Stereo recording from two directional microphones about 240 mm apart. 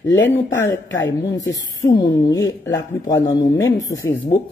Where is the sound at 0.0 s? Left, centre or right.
Left.